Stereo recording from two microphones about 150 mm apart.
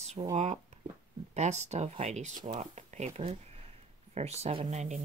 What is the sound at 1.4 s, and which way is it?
Speech, 50° right (ahead or behind).